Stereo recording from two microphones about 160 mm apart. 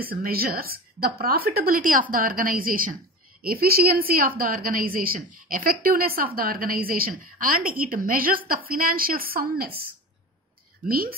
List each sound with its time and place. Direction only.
0.0 s a woman's voice: 65° right (ahead or behind)
10.9 s a woman's voice: 65° right (ahead or behind)